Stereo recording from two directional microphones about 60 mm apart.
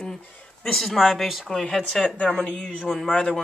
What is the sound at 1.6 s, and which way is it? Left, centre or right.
Speech, centre.